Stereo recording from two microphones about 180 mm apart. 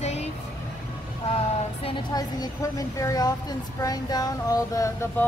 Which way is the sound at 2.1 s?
20° left (ahead or behind).